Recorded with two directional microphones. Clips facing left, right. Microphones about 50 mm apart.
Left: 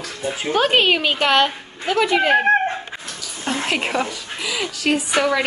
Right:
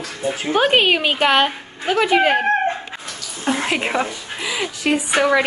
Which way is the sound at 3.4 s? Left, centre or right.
Centre.